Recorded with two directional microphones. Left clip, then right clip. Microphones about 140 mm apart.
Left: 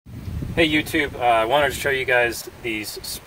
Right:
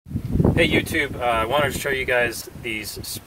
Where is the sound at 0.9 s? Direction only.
40° left (ahead or behind).